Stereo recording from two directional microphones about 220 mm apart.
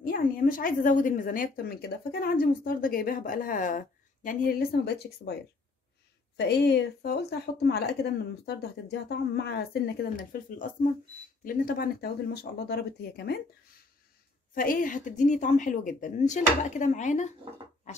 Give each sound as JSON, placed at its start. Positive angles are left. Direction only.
{"t": 0.0, "sound": "a woman's voice", "side_deg": 40}
{"t": 6.3, "sound": "a woman's voice", "side_deg": 50}
{"t": 14.5, "sound": "a woman's voice", "side_deg": 40}